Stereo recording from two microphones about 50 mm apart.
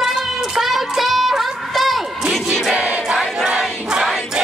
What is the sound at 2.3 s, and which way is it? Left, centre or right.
Crowd, centre.